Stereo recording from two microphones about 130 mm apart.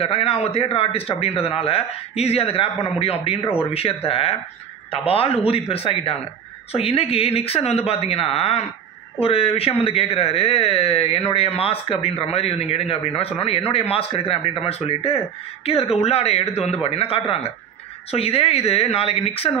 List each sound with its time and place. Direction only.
0.0 s speech: 50° left (ahead or behind)